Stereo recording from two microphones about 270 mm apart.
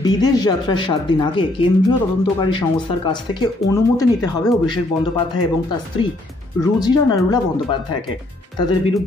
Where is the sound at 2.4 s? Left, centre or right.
Centre.